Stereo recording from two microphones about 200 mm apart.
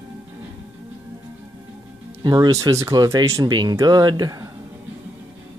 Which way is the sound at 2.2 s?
20° right (ahead or behind).